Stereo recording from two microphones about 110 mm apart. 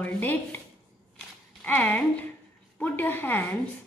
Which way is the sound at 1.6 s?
15° left (ahead or behind).